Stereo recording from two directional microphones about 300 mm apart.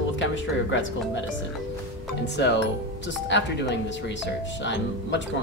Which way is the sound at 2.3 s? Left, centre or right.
Left.